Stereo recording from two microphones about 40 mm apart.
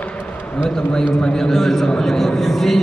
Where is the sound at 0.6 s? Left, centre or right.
Centre.